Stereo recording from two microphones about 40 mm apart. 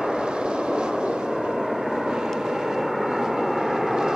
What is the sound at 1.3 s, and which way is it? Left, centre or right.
Vehicle, centre.